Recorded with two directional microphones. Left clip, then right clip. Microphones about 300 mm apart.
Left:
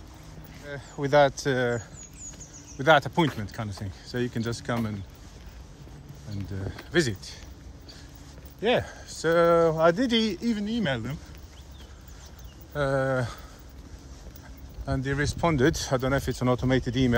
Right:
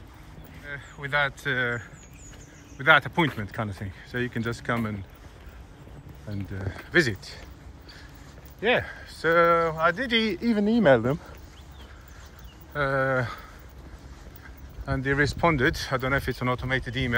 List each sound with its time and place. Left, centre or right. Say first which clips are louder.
0.7 s speech: left 4 dB; centre
6.3 s speech: right 1 dB; centre
8.5 s speech: right 1 dB; centre
12.7 s speech: right 1 dB; centre
14.9 s speech: right 4 dB; centre